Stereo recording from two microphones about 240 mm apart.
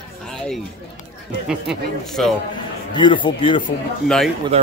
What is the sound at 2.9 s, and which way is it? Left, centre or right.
Speech, centre.